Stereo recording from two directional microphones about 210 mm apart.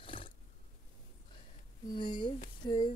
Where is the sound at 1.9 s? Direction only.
20° left (ahead or behind).